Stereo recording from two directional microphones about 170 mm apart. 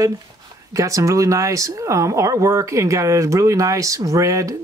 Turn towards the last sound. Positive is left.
turn(degrees=-20)  # may be behind; listen again after turning